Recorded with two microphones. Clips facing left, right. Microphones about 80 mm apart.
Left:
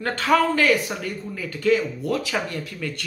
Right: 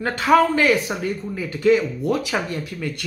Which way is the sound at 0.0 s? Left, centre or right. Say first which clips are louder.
Right 3 dB; centre.